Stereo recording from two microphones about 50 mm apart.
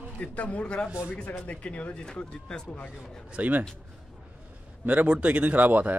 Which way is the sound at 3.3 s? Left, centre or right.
Right.